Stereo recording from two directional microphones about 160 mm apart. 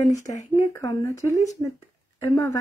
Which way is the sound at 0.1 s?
20° left (ahead or behind).